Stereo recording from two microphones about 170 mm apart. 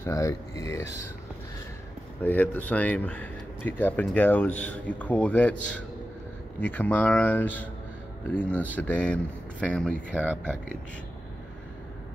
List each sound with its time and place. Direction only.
0.0 s speech: 20° left (ahead or behind)
2.2 s speech: 10° left (ahead or behind)